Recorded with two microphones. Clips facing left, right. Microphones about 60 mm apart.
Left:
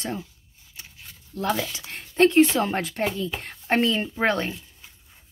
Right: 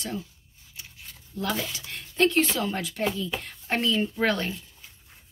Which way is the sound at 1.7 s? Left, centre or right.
Left.